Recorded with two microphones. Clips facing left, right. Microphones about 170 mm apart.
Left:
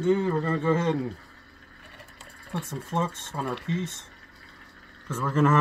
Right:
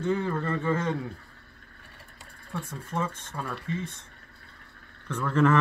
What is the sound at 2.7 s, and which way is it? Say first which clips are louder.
Speech: left 3 dB; 25° left (ahead or behind).